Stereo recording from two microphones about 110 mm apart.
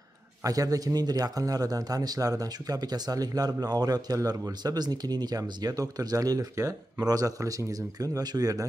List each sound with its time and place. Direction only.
0.4 s a man's voice: 30° right (ahead or behind)